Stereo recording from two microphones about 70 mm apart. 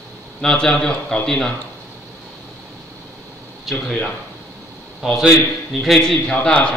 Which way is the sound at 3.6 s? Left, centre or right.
Centre.